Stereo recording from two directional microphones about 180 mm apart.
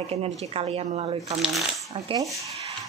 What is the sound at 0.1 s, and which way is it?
A woman's voice, 35° right (ahead or behind).